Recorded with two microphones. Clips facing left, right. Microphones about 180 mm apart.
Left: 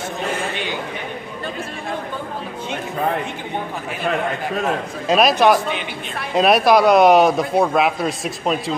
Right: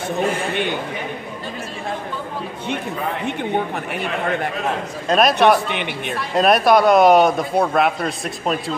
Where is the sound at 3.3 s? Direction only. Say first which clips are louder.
Right 5 dB; 60° right (ahead or behind).